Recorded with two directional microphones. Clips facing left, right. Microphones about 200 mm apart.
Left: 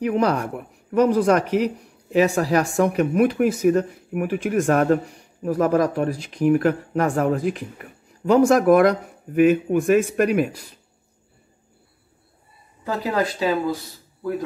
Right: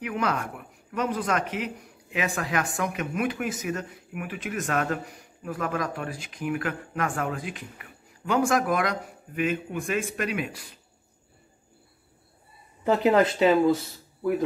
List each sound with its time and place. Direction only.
0.0 s speech: 30° left (ahead or behind)
4.8 s speech: 35° left (ahead or behind)
12.8 s speech: 20° right (ahead or behind)